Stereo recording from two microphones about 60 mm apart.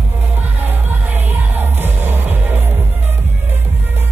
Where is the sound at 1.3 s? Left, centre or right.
Right.